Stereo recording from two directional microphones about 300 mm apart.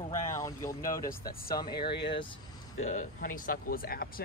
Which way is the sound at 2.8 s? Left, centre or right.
Left.